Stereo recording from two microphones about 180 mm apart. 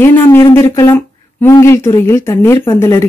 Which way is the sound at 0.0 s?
10° left (ahead or behind).